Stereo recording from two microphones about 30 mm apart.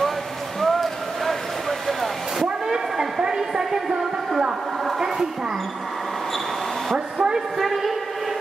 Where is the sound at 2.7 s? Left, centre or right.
Right.